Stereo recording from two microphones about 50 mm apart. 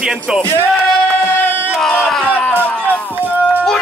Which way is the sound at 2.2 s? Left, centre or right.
Left.